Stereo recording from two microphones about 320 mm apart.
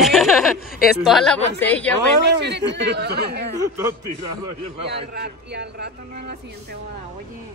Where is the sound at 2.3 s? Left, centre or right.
Right.